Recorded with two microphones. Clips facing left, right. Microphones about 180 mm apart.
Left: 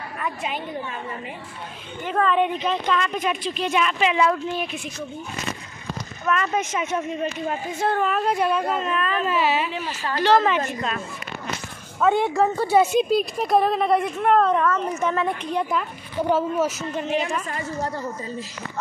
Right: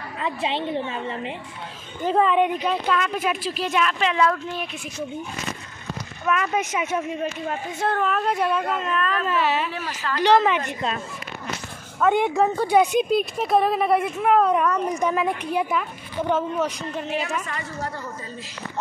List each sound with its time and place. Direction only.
0.2 s a woman's voice: 25° right (ahead or behind)
2.1 s speech: 10° right (ahead or behind); by 4.6 s 5° left (ahead or behind)
6.2 s speech: 5° right (ahead or behind)
7.4 s speech: 5° left (ahead or behind)
10.2 s speech: 15° right (ahead or behind)
12.0 s speech: 5° left (ahead or behind)
16.3 s speech: 5° left (ahead or behind)